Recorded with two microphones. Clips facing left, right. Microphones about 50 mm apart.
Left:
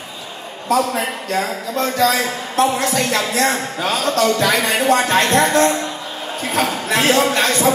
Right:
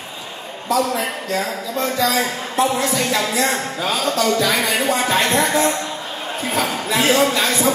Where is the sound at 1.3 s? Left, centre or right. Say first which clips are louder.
Left 3 dB; left.